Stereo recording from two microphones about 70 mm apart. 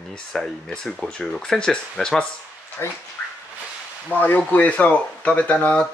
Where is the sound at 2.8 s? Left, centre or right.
Left.